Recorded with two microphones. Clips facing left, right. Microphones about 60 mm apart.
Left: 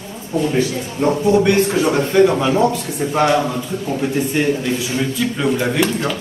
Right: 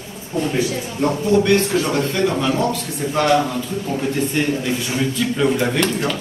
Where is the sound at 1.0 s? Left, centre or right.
Centre.